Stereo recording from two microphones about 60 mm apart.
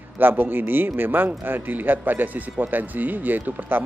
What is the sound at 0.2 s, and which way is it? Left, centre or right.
Speech, right.